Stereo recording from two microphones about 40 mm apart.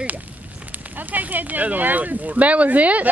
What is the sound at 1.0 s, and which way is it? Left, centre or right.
Speech, right.